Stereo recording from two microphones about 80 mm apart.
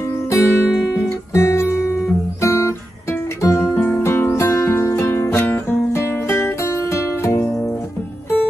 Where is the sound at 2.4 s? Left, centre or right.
Left.